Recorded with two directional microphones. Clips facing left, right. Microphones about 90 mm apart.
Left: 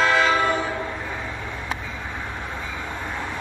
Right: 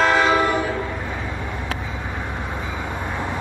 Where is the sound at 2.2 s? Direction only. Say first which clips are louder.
Right 3 dB; 15° right (ahead or behind).